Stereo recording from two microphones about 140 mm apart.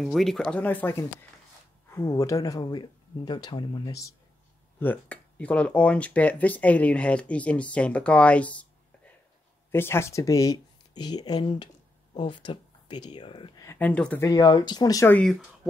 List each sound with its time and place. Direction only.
0.0 s speech: centre (ahead or behind); by 4.1 s 25° left (ahead or behind)
4.7 s speech: 15° left (ahead or behind); by 13.7 s 35° left (ahead or behind)
13.7 s speech: 10° left (ahead or behind)
14.2 s speech: 30° left (ahead or behind)
15.0 s speech: 10° left (ahead or behind)